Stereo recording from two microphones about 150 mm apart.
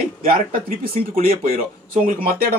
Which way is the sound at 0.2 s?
70° right (ahead or behind).